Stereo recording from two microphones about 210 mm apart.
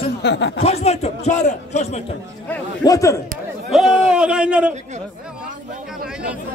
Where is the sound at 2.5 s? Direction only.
15° left (ahead or behind).